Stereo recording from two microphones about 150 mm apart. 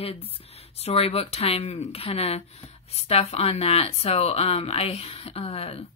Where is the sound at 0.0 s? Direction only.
40° left (ahead or behind).